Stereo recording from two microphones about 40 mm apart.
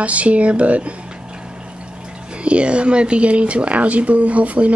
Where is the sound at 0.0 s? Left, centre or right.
Right.